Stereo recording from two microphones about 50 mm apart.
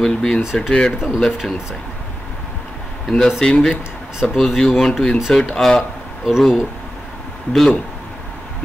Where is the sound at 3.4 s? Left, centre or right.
Centre.